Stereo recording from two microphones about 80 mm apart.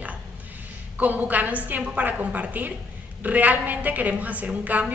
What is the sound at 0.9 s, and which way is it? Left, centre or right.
A woman's voice, right.